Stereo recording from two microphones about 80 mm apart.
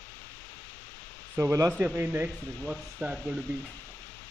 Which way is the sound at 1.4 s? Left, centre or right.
Right.